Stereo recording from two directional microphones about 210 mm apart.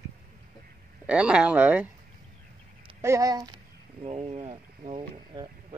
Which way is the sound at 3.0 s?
15° right (ahead or behind).